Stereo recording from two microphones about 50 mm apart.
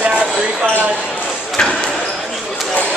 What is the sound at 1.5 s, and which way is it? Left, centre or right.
Basketball bounce, centre.